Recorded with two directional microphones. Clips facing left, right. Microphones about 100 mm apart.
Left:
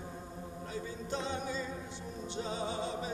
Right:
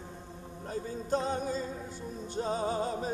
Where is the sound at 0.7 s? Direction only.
45° right (ahead or behind).